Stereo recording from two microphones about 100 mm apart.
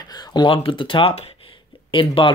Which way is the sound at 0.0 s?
45° left (ahead or behind).